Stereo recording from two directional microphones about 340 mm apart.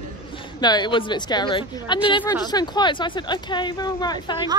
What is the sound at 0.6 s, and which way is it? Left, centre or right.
Speech, centre.